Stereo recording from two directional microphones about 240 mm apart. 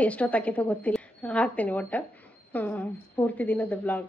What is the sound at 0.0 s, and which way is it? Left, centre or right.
A woman's voice, centre.